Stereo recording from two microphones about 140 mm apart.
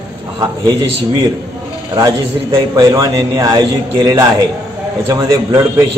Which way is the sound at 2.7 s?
25° right (ahead or behind).